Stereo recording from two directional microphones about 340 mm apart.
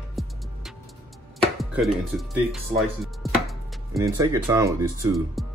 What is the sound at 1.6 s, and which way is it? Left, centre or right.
Speech, centre.